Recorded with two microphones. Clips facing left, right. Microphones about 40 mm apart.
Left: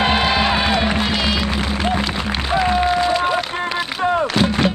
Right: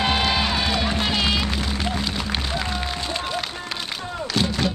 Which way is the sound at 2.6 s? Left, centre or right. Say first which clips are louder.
Left 11 dB; left.